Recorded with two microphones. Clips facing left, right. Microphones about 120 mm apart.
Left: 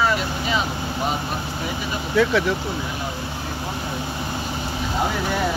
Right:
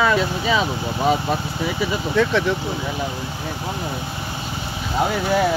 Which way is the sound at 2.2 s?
Centre (ahead or behind).